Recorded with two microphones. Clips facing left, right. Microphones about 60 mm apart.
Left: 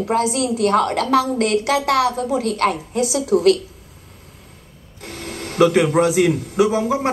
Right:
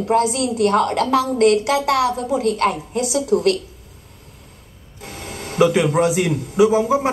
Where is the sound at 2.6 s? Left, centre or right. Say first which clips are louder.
Left 1 dB; left.